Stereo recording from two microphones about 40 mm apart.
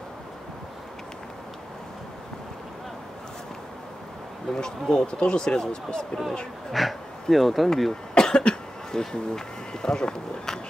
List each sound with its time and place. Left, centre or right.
4.5 s speech: centre
4.9 s speech: left
6.7 s speech: centre
8.1 s speech: left